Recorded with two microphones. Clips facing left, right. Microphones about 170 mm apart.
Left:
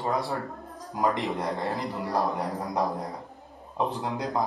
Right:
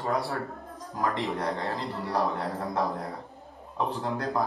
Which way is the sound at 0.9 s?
15° left (ahead or behind).